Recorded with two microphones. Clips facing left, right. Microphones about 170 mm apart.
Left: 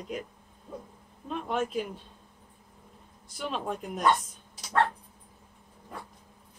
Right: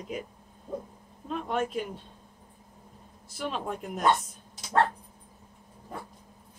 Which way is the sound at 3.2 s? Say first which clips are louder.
Even; centre (ahead or behind).